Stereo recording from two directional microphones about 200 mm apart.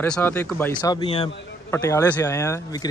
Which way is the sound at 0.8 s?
20° left (ahead or behind).